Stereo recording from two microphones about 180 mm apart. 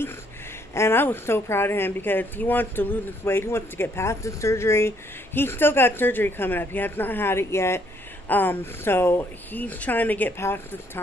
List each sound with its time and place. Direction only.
0.7 s speech: 15° left (ahead or behind)